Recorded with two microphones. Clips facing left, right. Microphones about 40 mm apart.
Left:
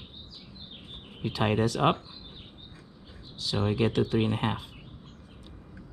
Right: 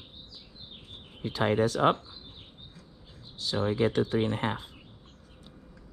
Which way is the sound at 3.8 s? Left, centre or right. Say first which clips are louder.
Even; centre.